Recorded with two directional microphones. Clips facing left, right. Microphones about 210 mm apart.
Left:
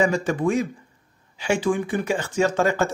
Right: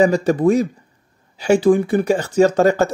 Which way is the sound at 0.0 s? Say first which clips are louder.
Right 7 dB; 35° right (ahead or behind).